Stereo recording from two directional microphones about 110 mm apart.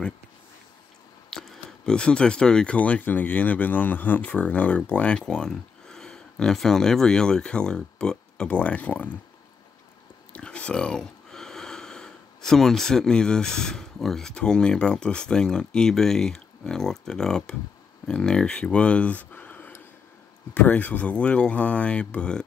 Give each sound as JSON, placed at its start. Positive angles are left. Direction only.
{"t": 1.3, "sound": "a sound", "side_deg": 5}
{"t": 1.9, "sound": "speech", "side_deg": 10}
{"t": 10.3, "sound": "speech", "side_deg": 10}